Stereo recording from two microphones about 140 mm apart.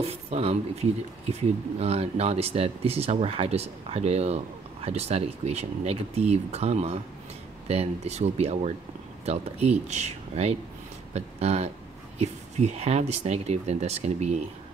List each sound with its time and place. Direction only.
0.1 s speech: 45° right (ahead or behind)